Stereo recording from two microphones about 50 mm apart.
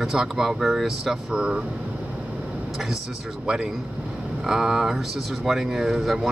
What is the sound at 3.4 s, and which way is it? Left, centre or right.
Speech, centre.